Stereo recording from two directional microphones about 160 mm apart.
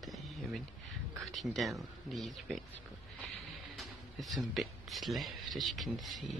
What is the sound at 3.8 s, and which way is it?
Speech, centre (ahead or behind).